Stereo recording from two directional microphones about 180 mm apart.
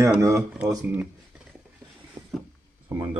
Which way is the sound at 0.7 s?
15° right (ahead or behind).